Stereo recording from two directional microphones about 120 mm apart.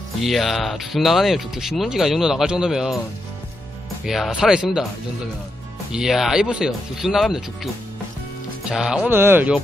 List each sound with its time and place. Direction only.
0.2 s speech: centre (ahead or behind)
4.0 s speech: centre (ahead or behind)
9.1 s speech: 15° right (ahead or behind)